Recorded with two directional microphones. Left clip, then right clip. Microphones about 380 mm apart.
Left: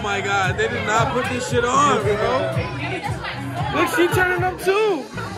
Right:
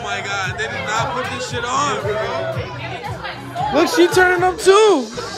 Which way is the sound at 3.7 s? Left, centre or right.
Right.